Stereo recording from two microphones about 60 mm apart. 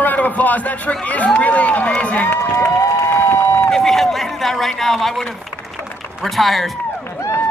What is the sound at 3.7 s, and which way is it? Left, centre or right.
A man's voice, centre.